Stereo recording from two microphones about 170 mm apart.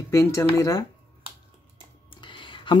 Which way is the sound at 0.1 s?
15° left (ahead or behind).